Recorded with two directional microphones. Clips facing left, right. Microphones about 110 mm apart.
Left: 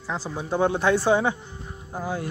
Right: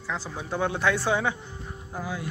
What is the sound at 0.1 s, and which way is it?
Speech, 15° left (ahead or behind).